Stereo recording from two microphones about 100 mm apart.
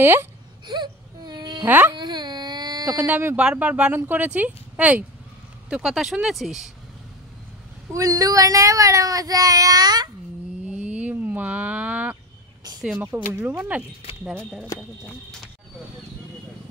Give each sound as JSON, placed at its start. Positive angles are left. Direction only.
{"t": 0.0, "sound": "speech", "side_deg": -25}
{"t": 0.7, "sound": "baby cry", "side_deg": -45}
{"t": 1.7, "sound": "speech", "side_deg": -20}
{"t": 2.0, "sound": "a sound", "side_deg": -45}
{"t": 3.1, "sound": "speech", "side_deg": -20}
{"t": 5.7, "sound": "speech", "side_deg": -5}
{"t": 7.9, "sound": "speech", "side_deg": -35}
{"t": 10.7, "sound": "a sound", "side_deg": -15}
{"t": 13.0, "sound": "speech", "side_deg": -20}
{"t": 14.7, "sound": "speech", "side_deg": 30}